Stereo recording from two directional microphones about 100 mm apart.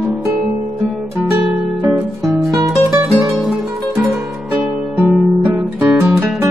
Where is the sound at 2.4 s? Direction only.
Centre (ahead or behind).